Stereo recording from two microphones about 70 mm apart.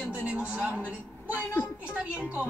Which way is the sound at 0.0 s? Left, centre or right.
Centre.